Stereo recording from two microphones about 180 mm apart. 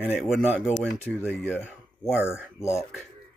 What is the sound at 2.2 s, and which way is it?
Speech, 15° left (ahead or behind).